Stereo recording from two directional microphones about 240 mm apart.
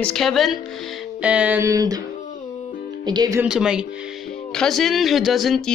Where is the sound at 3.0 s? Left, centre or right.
Centre.